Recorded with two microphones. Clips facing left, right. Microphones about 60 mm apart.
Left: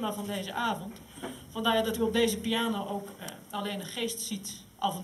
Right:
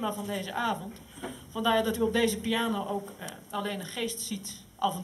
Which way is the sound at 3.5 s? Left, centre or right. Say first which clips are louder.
Right 2 dB; centre.